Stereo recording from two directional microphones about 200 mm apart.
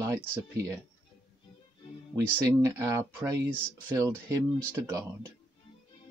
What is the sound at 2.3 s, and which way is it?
Speech, 15° right (ahead or behind).